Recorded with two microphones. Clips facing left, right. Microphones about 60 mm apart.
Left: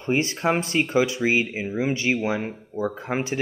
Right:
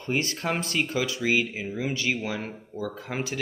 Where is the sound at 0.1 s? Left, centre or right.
Left.